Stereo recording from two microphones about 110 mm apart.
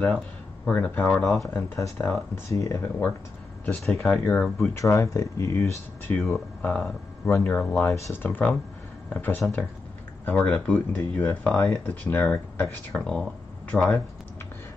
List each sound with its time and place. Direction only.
0.7 s speech: 15° left (ahead or behind)
3.6 s speech: 5° left (ahead or behind)
4.7 s speech: 30° left (ahead or behind)
6.2 s speech: 10° left (ahead or behind)
12.9 s speech: 5° left (ahead or behind)